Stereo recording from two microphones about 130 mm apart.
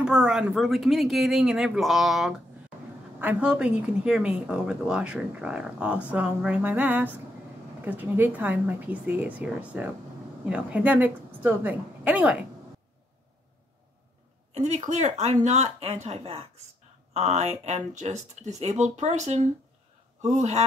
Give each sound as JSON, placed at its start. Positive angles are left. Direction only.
{"t": 0.0, "sound": "a woman's voice", "side_deg": -5}
{"t": 14.5, "sound": "speech", "side_deg": -60}